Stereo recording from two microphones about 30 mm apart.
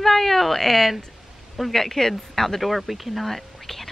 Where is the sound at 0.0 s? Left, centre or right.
Centre.